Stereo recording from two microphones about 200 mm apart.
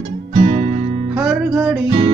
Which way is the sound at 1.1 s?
5° right (ahead or behind).